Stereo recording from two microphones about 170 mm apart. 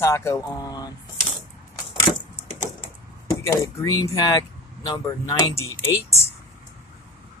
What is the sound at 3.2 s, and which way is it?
Speech, 20° left (ahead or behind).